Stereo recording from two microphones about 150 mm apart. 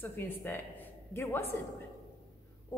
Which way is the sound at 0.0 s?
15° left (ahead or behind).